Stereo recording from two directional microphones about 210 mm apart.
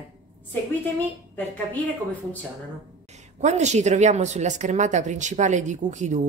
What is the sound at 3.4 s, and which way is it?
Speech, 35° right (ahead or behind).